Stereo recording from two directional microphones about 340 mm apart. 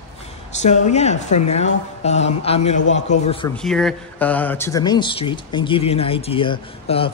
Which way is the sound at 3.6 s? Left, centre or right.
Centre.